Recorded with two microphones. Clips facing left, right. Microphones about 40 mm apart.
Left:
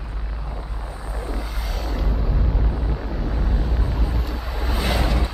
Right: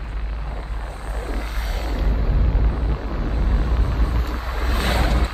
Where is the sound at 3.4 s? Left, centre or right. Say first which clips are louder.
Even; right.